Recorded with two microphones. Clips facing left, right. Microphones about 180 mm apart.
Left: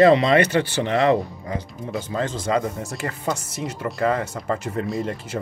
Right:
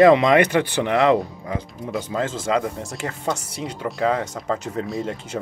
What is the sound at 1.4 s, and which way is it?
Speech, 5° right (ahead or behind).